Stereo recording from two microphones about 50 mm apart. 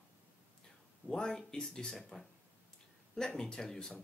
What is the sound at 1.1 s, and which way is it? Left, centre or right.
Speech, centre.